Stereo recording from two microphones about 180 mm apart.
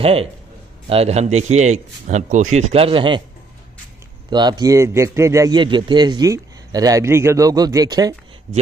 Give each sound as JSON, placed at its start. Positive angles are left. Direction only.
{"t": 0.0, "sound": "a man's voice", "side_deg": -30}
{"t": 4.3, "sound": "a man's voice", "side_deg": -25}